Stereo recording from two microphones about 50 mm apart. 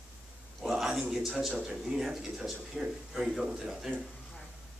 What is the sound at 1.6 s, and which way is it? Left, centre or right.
Speech, centre.